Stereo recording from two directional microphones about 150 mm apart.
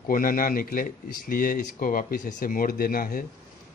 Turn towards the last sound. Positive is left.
turn(degrees=70)  # may be behind; listen again after turning